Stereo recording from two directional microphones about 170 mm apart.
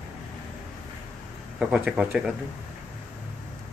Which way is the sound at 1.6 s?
5° right (ahead or behind).